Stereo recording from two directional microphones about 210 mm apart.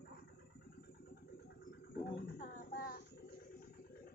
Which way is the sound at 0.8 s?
50° left (ahead or behind).